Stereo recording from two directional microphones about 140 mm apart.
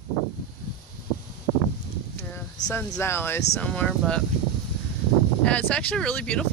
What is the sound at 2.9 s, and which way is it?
Speech, 15° left (ahead or behind).